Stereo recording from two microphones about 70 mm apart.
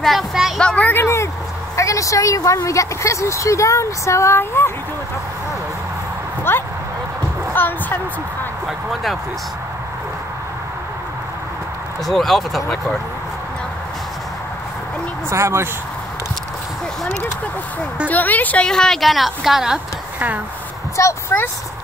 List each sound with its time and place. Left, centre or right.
0.0 s speech: centre
0.6 s a sound: centre
1.0 s vehicle: left
1.8 s a woman's voice: left
6.5 s a woman's voice: left
8.6 s a woman's voice: centre
12.1 s a woman's voice: centre
15.2 s speech: right
18.0 s speech: left
18.7 s a woman's voice: centre
20.9 s speech: left